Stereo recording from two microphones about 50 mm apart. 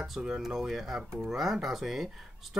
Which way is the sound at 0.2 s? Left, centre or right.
Centre.